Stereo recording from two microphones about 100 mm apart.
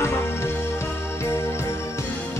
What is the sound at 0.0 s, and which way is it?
Music, 25° left (ahead or behind).